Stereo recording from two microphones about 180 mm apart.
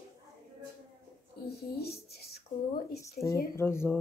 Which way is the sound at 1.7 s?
60° left (ahead or behind).